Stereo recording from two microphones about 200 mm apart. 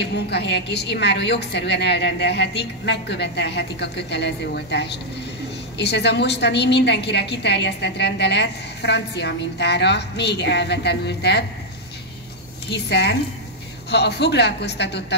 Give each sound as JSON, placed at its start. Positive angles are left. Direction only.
{"t": 0.0, "sound": "a woman's voice", "side_deg": 60}
{"t": 12.6, "sound": "a woman's voice", "side_deg": 55}